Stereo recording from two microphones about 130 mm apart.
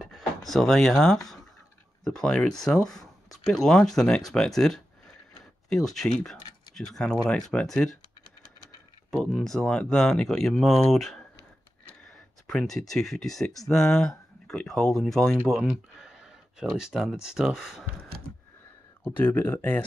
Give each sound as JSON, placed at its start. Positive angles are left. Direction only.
{"t": 0.0, "sound": "speech", "side_deg": 0}
{"t": 9.1, "sound": "speech", "side_deg": 5}
{"t": 12.4, "sound": "speech", "side_deg": 5}
{"t": 19.0, "sound": "speech", "side_deg": 15}